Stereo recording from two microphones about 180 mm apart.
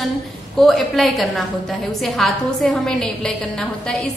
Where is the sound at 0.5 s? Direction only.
Centre (ahead or behind).